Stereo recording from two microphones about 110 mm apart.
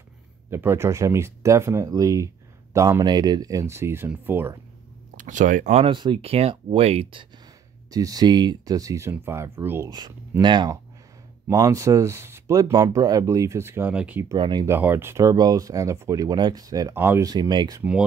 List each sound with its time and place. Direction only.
0.5 s speech: 20° right (ahead or behind)
5.6 s speech: 90° right
5.9 s speech: 50° right (ahead or behind); by 7.1 s 70° right (ahead or behind)
7.9 s speech: 35° right (ahead or behind)
9.8 s speech: 40° right (ahead or behind)
11.5 s speech: 30° right (ahead or behind); by 14.2 s 15° right (ahead or behind)
14.4 s speech: 45° right (ahead or behind)
14.7 s speech: 20° right (ahead or behind)
16.9 s speech: 20° right (ahead or behind)
17.2 s speech: 40° right (ahead or behind)